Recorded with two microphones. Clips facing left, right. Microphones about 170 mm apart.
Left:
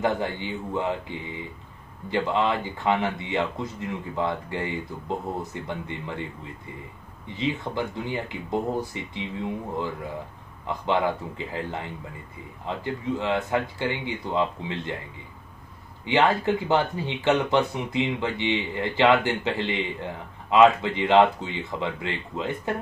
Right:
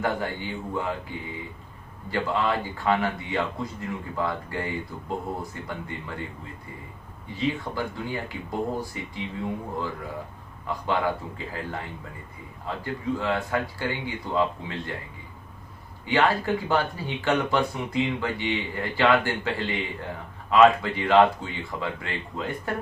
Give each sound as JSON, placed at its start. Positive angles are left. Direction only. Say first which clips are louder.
{"t": 0.0, "sound": "speech", "louder": "left 2 dB", "side_deg": 20}
{"t": 2.0, "sound": "speech", "louder": "left 2 dB", "side_deg": 20}
{"t": 7.3, "sound": "speech", "louder": "even", "side_deg": 20}
{"t": 16.1, "sound": "speech", "louder": "left 1 dB", "side_deg": 20}